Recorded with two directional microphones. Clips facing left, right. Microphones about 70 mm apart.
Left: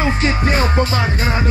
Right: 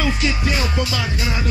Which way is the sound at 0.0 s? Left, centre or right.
Left.